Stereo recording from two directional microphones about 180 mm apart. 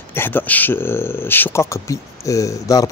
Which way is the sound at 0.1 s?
10° left (ahead or behind).